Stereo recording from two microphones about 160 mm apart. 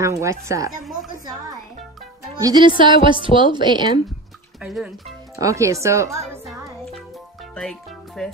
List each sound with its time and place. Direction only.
0.2 s speech: 20° right (ahead or behind)
2.3 s a woman's voice: 25° right (ahead or behind)
4.6 s speech: 5° right (ahead or behind)
5.3 s speech: 20° right (ahead or behind)
6.4 s music: centre (ahead or behind)
8.2 s speech: 5° left (ahead or behind)